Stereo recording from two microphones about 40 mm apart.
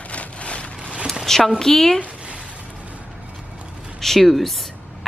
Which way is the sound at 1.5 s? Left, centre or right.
Centre.